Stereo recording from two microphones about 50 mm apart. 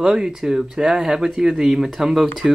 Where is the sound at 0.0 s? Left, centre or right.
Centre.